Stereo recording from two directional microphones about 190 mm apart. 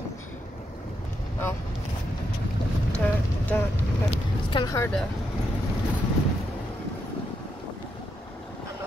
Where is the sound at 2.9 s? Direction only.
5° left (ahead or behind).